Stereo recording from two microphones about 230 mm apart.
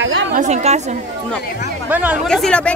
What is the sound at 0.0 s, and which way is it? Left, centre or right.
Chatter, right.